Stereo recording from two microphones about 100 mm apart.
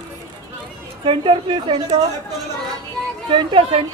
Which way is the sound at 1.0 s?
60° right (ahead or behind).